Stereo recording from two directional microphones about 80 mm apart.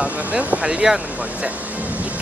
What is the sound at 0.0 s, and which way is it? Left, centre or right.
Speech, centre.